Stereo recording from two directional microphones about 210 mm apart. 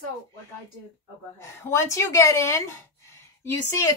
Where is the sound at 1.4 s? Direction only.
10° left (ahead or behind).